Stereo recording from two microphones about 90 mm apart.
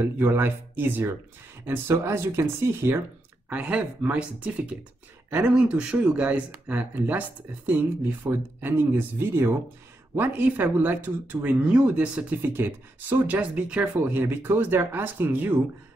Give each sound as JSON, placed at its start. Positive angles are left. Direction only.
{"t": 0.0, "sound": "speech", "side_deg": -25}